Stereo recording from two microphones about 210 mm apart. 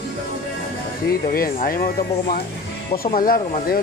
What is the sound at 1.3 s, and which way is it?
Speech, 45° left (ahead or behind).